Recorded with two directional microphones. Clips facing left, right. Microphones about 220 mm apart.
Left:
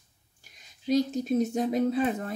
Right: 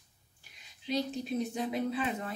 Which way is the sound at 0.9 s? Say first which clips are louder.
Left 8 dB; 45° left (ahead or behind).